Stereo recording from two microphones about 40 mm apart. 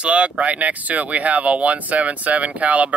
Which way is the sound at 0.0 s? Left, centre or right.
Right.